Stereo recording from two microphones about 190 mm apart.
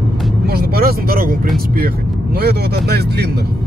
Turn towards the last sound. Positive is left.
turn(degrees=-55)  # may be behind; listen again after turning